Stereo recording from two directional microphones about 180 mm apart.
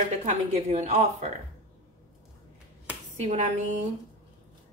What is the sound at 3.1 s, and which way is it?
Speech, 40° right (ahead or behind).